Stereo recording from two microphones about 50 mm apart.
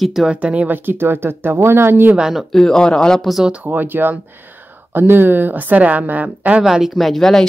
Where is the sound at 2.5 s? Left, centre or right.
Centre.